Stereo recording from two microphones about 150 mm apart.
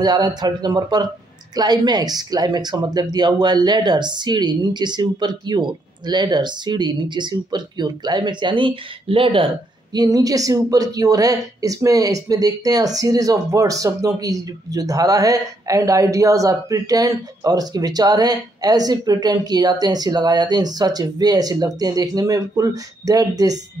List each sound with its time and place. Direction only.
0.0 s speech: 30° right (ahead or behind)
9.9 s speech: 25° right (ahead or behind)